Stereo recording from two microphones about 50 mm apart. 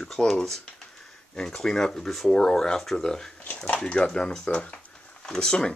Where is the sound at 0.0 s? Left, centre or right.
Centre.